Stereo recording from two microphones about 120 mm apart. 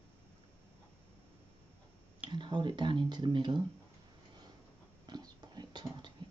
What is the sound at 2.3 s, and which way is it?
Speech, 40° right (ahead or behind).